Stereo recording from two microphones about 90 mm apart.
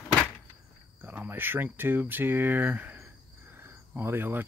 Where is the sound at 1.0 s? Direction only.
20° right (ahead or behind).